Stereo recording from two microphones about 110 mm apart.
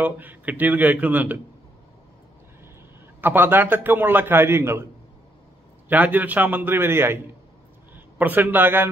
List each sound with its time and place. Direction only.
0.0 s speech: 15° right (ahead or behind)
3.2 s a man's voice: 20° right (ahead or behind)
5.9 s a man's voice: 15° right (ahead or behind)